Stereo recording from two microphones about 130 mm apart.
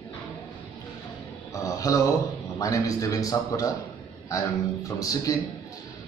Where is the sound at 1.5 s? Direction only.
25° left (ahead or behind).